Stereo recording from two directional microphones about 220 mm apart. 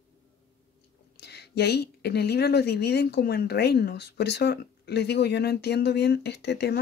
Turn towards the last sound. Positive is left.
turn(degrees=50)  # may be behind; listen again after turning